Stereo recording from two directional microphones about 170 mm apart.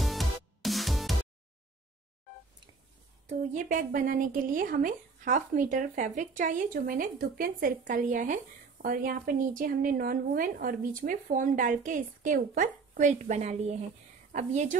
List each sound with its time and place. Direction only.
0.0 s music: centre (ahead or behind)
3.3 s speech: 50° right (ahead or behind)